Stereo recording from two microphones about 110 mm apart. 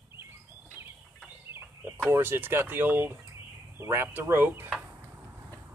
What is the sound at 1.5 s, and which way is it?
Speech, 20° right (ahead or behind).